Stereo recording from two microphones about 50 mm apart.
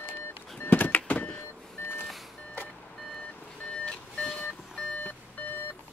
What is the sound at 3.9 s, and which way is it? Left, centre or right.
Vehicle, centre.